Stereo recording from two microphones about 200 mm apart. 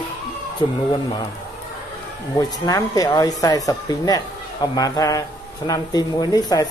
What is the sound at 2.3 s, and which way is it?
Speech, 20° left (ahead or behind).